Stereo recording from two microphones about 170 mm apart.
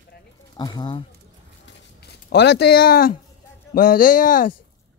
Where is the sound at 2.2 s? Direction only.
75° left (ahead or behind); by 4.5 s 55° left (ahead or behind).